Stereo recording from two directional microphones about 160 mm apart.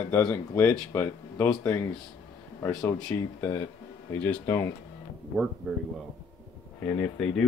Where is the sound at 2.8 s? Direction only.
20° left (ahead or behind).